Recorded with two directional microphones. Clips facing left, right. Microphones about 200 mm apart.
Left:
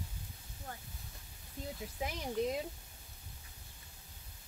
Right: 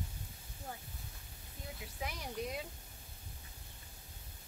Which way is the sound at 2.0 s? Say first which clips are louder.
Left 3 dB; 35° left (ahead or behind).